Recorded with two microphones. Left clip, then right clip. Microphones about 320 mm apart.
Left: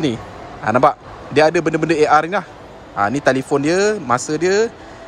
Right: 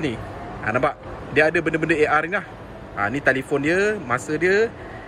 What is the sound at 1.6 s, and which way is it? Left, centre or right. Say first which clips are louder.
Speech: left 4 dB; left.